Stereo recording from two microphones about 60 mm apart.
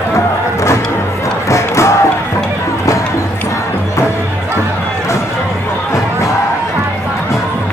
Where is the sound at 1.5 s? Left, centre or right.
Left.